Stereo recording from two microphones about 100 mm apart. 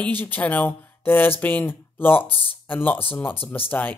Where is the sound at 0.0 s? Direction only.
20° left (ahead or behind).